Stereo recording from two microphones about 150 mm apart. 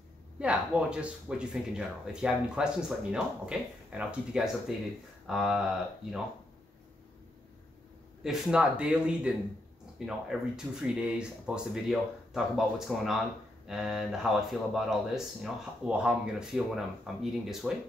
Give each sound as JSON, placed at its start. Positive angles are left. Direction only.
{"t": 0.4, "sound": "speech", "side_deg": -5}
{"t": 8.2, "sound": "speech", "side_deg": -5}